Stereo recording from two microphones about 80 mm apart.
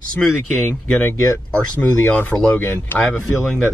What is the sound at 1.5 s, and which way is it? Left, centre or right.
Speech, left.